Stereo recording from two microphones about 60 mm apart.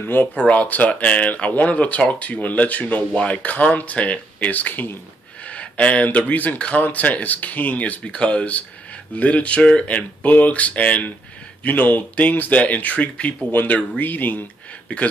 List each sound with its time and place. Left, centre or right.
0.0 s speech: left
0.5 s speech: left